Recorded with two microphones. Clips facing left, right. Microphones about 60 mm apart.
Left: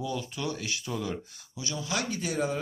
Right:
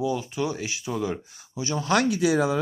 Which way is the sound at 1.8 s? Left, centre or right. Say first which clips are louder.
Right 10 dB; right.